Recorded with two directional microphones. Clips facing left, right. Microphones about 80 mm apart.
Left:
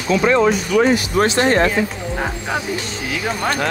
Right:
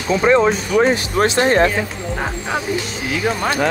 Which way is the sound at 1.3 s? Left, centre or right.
Centre.